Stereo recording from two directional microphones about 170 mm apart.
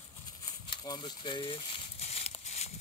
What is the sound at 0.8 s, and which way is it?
Speech, 25° left (ahead or behind).